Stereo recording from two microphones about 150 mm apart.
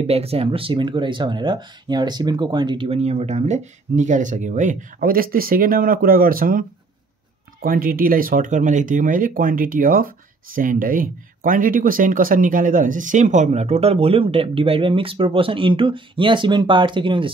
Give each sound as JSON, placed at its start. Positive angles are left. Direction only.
{"t": 0.0, "sound": "speech", "side_deg": -40}
{"t": 2.9, "sound": "speech", "side_deg": -45}
{"t": 7.6, "sound": "speech", "side_deg": -70}